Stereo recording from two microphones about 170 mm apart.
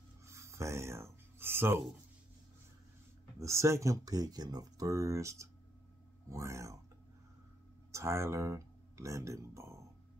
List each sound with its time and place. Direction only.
0.3 s speech: 15° right (ahead or behind)
3.3 s speech: 15° right (ahead or behind)
7.9 s speech: 15° right (ahead or behind)